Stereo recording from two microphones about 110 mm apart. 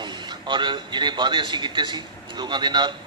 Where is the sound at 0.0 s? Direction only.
45° right (ahead or behind).